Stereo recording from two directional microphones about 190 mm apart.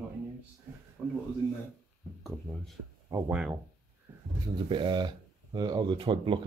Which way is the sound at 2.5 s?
Centre (ahead or behind).